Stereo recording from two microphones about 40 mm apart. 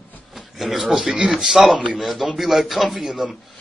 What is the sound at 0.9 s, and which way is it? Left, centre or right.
Speech, right.